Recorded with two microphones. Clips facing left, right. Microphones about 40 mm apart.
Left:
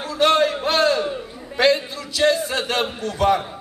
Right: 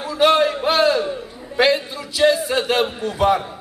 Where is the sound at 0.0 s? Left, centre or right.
Centre.